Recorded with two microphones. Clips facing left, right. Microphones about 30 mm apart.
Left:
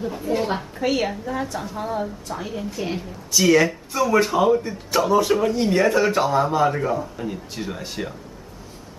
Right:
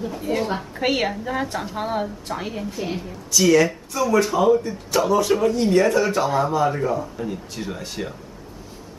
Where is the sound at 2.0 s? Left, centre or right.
Centre.